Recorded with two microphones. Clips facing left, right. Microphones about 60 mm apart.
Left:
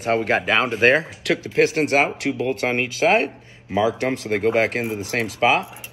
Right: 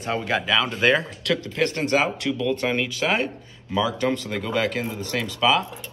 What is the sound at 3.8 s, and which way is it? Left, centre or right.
Speech, centre.